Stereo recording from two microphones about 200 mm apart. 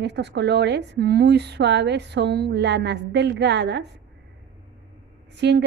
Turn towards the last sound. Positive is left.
turn(degrees=-60)  # may be behind; listen again after turning